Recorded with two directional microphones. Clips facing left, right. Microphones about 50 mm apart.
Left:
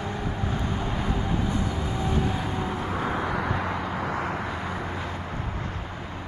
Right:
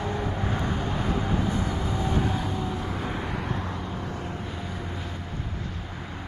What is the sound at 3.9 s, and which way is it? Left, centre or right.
Vehicle, left.